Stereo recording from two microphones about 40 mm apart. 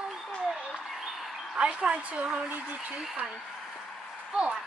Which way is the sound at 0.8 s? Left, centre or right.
Centre.